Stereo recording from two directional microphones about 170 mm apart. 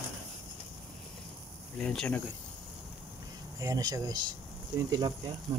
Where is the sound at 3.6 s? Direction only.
20° right (ahead or behind).